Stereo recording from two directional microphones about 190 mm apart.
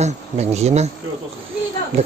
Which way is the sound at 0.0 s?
35° right (ahead or behind).